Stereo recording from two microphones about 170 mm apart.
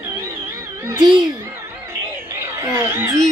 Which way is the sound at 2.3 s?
15° right (ahead or behind).